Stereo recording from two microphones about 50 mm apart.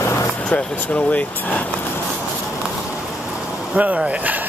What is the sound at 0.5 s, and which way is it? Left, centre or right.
Speech, left.